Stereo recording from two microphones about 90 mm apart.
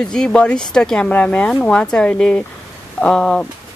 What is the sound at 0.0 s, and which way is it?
Speech, 10° left (ahead or behind).